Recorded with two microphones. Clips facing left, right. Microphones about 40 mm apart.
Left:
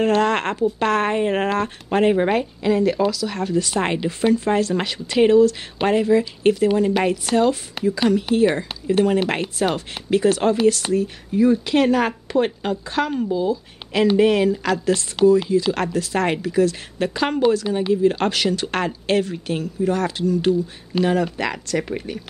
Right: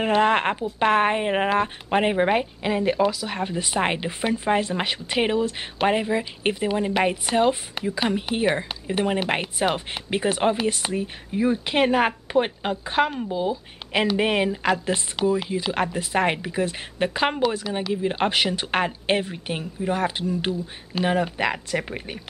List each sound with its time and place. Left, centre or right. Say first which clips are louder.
0.0 s a woman's voice: left 1 dB; centre